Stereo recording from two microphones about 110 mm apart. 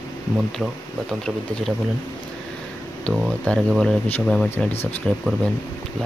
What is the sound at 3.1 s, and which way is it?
Speech, 10° left (ahead or behind).